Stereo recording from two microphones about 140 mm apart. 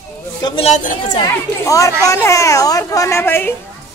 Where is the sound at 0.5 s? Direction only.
50° left (ahead or behind).